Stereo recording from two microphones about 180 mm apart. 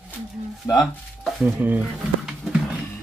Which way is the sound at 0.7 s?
15° left (ahead or behind).